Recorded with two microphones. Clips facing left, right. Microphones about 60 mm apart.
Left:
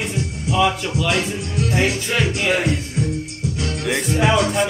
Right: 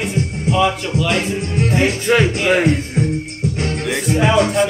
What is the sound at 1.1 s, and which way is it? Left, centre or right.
Music, right.